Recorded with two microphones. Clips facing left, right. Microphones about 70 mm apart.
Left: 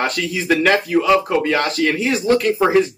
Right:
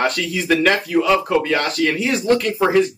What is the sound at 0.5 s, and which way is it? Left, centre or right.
Speech, centre.